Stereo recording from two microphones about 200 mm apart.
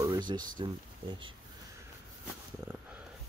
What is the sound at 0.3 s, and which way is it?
Speech, 25° right (ahead or behind).